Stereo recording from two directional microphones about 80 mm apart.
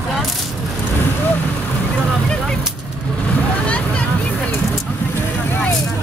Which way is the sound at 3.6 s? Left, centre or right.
Centre.